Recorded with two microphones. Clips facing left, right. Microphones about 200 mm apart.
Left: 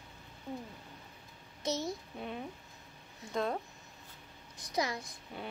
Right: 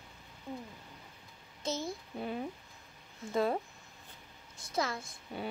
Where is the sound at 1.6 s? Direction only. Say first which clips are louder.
Left 1 dB; 20° left (ahead or behind).